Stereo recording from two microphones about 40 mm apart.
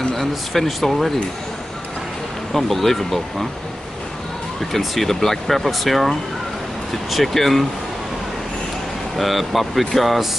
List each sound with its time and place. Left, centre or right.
0.1 s speech: centre
2.5 s speech: centre
4.6 s speech: centre
9.1 s speech: centre